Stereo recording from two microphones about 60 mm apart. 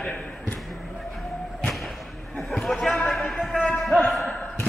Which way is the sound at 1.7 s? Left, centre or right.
Centre.